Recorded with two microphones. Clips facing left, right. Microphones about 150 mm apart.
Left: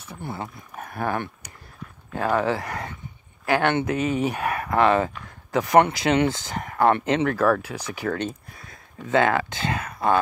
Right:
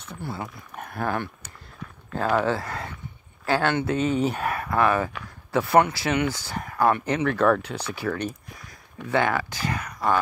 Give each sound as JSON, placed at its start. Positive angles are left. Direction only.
{"t": 0.1, "sound": "speech", "side_deg": 20}
{"t": 7.6, "sound": "speech", "side_deg": 10}
{"t": 9.1, "sound": "speech", "side_deg": 25}